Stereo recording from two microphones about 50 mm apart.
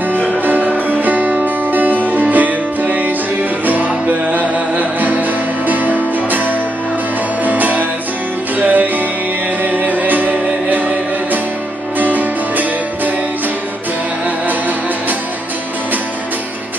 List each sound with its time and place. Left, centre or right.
0.3 s music: right
12.0 s music: right